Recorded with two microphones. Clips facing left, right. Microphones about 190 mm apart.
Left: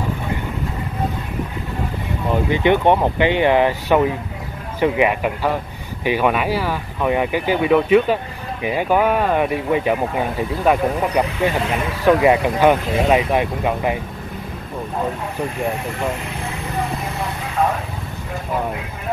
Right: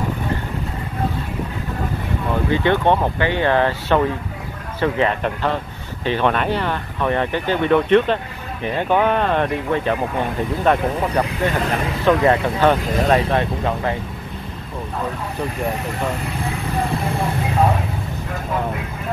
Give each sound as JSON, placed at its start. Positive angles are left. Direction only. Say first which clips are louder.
{"t": 2.5, "sound": "speech", "louder": "left 2 dB", "side_deg": 15}